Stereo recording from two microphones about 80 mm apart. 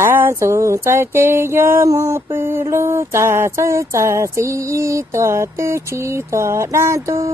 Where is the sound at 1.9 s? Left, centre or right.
Right.